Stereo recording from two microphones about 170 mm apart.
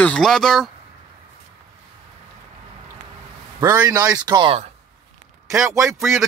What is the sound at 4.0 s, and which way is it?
Speech, 20° right (ahead or behind).